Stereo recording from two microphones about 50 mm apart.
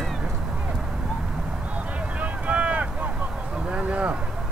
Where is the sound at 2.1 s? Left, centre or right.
Right.